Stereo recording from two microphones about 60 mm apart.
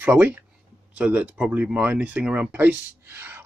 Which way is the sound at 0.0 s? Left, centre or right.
Right.